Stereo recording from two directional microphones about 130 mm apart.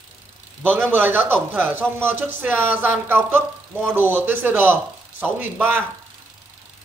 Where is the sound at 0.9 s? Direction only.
15° right (ahead or behind).